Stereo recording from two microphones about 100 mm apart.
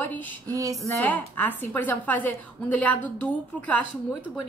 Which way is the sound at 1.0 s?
20° left (ahead or behind).